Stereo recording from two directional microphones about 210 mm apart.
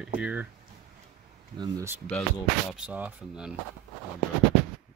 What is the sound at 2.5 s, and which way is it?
Speech, 5° right (ahead or behind).